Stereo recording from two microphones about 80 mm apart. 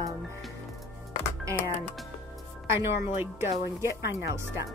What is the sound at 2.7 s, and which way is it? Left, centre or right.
A woman's voice, right.